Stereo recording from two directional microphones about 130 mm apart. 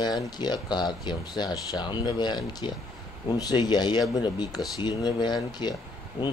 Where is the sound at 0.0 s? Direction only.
35° left (ahead or behind).